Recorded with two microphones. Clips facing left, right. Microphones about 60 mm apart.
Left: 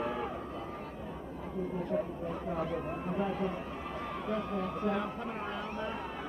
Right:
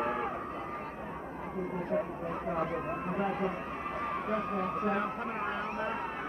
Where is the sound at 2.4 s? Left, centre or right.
Right.